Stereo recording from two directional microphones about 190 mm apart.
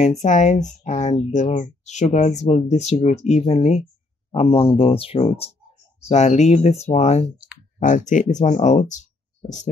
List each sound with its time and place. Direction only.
0.2 s speech: 40° left (ahead or behind)